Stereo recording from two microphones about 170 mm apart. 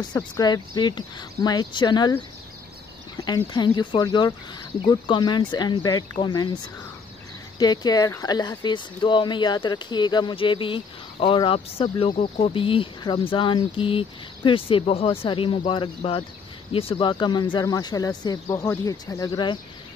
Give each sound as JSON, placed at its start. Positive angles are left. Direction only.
{"t": 0.0, "sound": "speech", "side_deg": 25}
{"t": 3.2, "sound": "speech", "side_deg": 25}
{"t": 7.5, "sound": "speech", "side_deg": 25}